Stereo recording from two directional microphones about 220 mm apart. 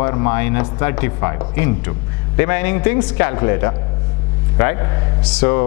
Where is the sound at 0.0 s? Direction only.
15° left (ahead or behind).